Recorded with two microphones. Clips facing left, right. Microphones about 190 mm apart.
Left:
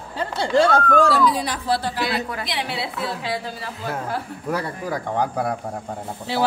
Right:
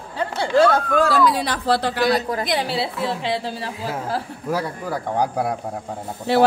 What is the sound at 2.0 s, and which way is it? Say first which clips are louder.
Speech: right 6 dB; 40° right (ahead or behind).